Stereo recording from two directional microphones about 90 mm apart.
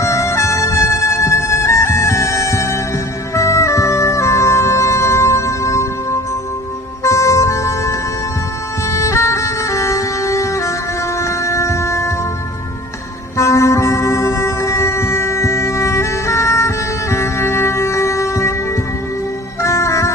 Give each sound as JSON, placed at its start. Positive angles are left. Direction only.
{"t": 0.0, "sound": "music", "side_deg": 30}
{"t": 7.0, "sound": "music", "side_deg": 35}
{"t": 11.1, "sound": "wind instrument", "side_deg": 35}
{"t": 13.4, "sound": "music", "side_deg": 35}